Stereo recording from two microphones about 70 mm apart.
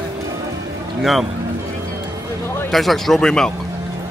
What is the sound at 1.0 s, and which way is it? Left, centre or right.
Speech, centre.